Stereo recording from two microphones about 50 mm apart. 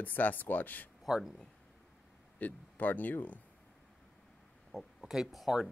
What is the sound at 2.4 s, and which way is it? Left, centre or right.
Speech, left.